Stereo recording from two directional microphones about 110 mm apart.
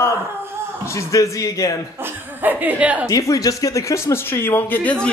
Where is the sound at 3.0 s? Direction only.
30° left (ahead or behind).